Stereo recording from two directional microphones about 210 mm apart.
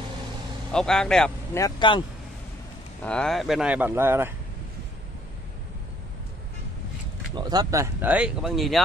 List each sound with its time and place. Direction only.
0.7 s speech: 5° left (ahead or behind)
1.6 s speech: 20° left (ahead or behind)
3.0 s speech: 5° left (ahead or behind); by 4.3 s 10° right (ahead or behind)
7.3 s speech: 20° right (ahead or behind); by 8.8 s centre (ahead or behind)